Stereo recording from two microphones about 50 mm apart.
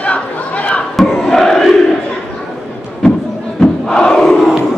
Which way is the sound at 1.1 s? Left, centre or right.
Centre.